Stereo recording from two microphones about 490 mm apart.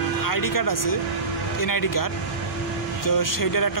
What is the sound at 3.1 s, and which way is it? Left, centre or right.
Speech, left.